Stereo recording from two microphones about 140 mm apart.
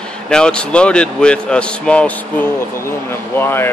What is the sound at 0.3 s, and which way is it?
Speech, 5° left (ahead or behind).